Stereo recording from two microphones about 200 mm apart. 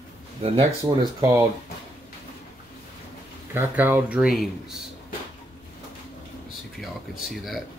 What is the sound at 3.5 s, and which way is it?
Speech, 10° right (ahead or behind).